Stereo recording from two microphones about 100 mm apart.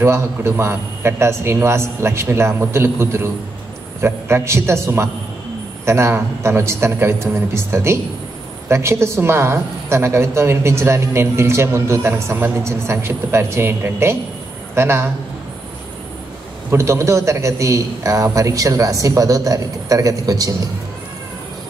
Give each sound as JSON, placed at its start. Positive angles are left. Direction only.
{"t": 0.0, "sound": "a woman's voice", "side_deg": -25}
{"t": 16.7, "sound": "a man's voice", "side_deg": -30}